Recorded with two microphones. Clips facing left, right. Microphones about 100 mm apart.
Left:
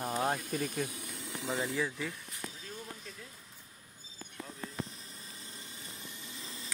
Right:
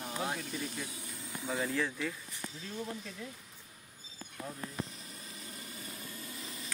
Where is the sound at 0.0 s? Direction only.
45° left (ahead or behind); by 1.5 s 80° left.